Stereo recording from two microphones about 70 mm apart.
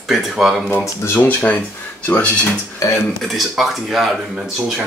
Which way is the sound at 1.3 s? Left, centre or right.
Left.